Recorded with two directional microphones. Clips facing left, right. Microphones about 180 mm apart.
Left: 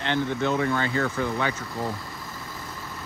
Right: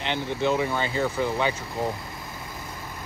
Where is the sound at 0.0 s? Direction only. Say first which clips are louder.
Left 1 dB; 20° right (ahead or behind).